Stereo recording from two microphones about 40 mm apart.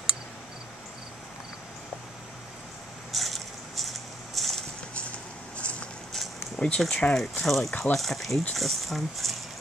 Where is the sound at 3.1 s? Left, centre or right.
Centre.